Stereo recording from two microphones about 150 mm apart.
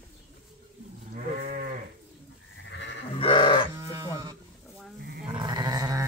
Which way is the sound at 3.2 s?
35° left (ahead or behind).